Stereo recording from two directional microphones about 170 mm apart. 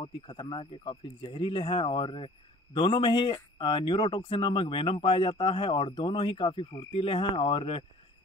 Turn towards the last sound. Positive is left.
turn(degrees=30)  # may be behind; listen again after turning